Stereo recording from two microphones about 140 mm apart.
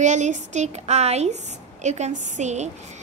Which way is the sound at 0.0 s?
60° right (ahead or behind).